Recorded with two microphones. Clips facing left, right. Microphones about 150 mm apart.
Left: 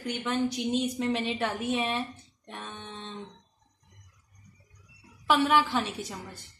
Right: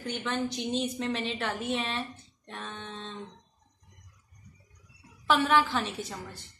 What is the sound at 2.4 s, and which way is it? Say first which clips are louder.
Music: right 1 dB; 15° left (ahead or behind).